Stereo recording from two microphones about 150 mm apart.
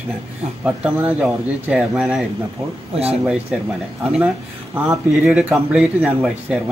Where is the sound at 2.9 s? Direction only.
45° right (ahead or behind).